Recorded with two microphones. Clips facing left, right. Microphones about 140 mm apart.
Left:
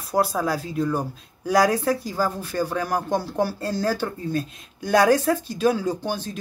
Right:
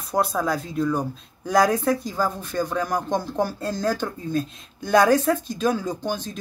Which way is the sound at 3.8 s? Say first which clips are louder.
Even; 5° left (ahead or behind).